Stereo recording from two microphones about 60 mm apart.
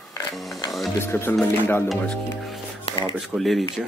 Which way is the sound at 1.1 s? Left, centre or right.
Left.